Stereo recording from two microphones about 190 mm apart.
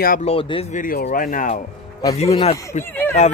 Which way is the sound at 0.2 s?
30° left (ahead or behind).